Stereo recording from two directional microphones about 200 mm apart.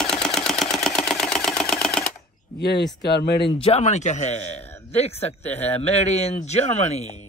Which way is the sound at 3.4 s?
30° left (ahead or behind).